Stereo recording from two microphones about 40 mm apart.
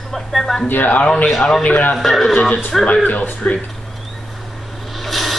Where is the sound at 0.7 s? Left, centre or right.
Left.